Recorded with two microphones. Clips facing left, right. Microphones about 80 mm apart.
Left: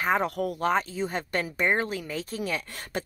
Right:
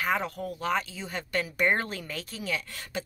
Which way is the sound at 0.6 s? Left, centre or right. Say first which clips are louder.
Left 3 dB; left.